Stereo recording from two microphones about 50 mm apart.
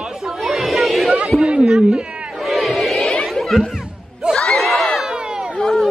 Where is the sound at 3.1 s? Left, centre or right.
Centre.